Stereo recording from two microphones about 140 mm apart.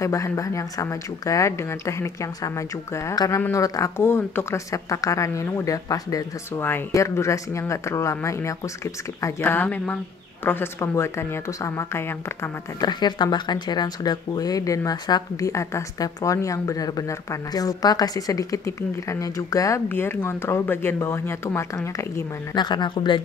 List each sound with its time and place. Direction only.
0.0 s speech: 20° left (ahead or behind)
12.8 s speech: 30° left (ahead or behind)